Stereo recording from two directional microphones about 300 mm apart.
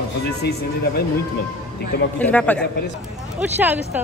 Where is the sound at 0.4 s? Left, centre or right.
Left.